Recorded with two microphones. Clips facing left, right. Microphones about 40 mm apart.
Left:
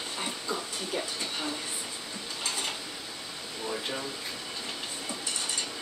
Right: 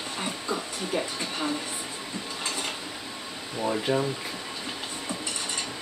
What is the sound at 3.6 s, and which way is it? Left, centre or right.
Speech, right.